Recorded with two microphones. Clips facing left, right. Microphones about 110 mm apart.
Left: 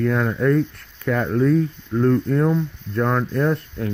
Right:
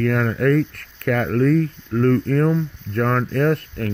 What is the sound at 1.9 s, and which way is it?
Speech, 20° left (ahead or behind).